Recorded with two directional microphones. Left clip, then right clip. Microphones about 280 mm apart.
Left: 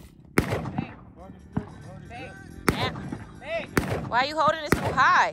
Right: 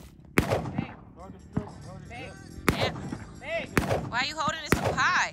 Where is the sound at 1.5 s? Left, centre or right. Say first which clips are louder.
Left 1 dB; centre.